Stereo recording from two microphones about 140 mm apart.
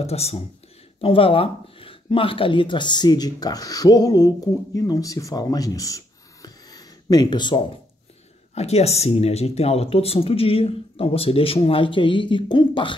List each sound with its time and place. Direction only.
0.0 s speech: 45° left (ahead or behind)
8.5 s speech: 50° left (ahead or behind)